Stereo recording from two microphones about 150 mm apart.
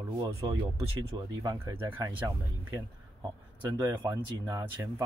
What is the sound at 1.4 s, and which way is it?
Speech, 25° right (ahead or behind).